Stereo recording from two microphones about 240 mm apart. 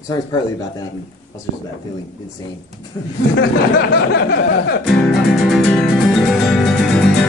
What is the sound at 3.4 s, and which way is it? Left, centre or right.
Speech, left.